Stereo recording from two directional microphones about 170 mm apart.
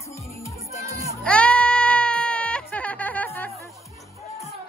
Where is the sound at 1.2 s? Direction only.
5° left (ahead or behind).